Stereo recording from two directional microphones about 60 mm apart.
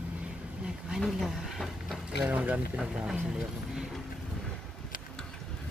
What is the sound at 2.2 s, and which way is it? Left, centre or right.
Speech, right.